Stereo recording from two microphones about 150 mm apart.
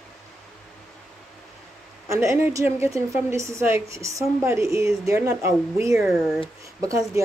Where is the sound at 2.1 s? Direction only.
20° right (ahead or behind).